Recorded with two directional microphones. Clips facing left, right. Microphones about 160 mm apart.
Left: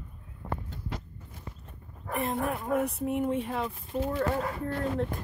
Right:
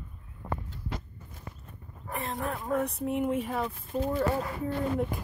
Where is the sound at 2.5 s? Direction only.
5° left (ahead or behind).